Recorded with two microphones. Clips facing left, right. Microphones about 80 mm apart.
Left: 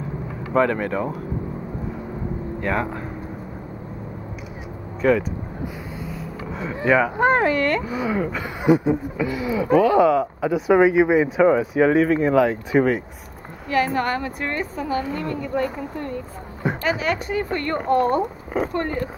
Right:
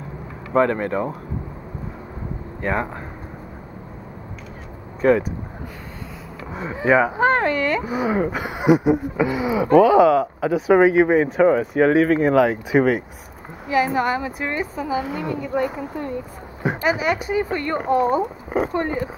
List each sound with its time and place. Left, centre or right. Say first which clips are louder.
0.5 s a woman's voice: right 1 dB; centre
2.6 s a woman's voice: right 1 dB; centre
6.5 s speech: right 1 dB; centre
7.8 s a woman's voice: right 2 dB; centre
9.8 s a woman's voice: right 2 dB; centre